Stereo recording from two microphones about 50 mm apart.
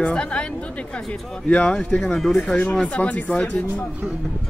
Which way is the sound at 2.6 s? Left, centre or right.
Left.